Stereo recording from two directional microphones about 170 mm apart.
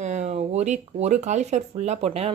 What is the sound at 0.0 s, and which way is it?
Speech, 45° right (ahead or behind).